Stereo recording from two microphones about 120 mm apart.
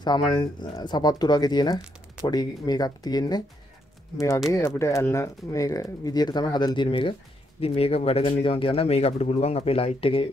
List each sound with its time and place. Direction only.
0.0 s speech: 40° left (ahead or behind)
4.5 s speech: 25° left (ahead or behind); by 10.3 s 50° left (ahead or behind)